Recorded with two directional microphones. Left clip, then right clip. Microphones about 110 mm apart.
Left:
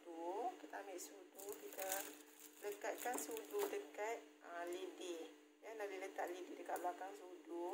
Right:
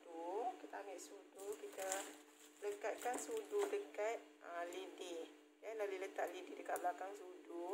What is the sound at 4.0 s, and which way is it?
Speech, 30° right (ahead or behind).